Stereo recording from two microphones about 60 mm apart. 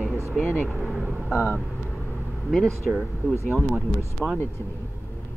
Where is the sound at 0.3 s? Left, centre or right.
Centre.